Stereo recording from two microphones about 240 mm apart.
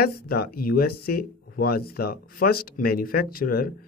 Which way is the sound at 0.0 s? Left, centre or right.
Left.